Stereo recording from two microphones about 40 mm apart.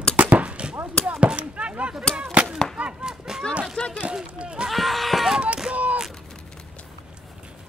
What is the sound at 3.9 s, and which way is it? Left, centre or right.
Speech, right.